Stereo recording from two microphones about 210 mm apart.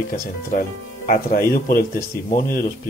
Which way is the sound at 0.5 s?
40° left (ahead or behind).